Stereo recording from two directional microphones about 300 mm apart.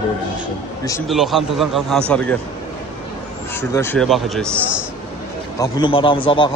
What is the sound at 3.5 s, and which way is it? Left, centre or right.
A man's voice, centre.